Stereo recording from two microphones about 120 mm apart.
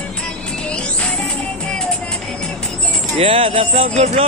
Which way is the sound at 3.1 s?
50° right (ahead or behind).